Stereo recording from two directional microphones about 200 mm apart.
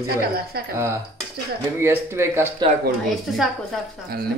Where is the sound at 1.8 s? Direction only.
10° right (ahead or behind).